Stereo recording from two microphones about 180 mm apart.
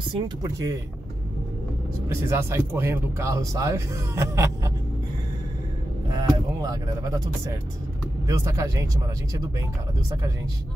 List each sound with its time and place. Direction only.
0.1 s speech: 20° right (ahead or behind)
2.0 s speech: 15° right (ahead or behind)
6.6 s speech: 20° right (ahead or behind)
8.3 s speech: 15° right (ahead or behind)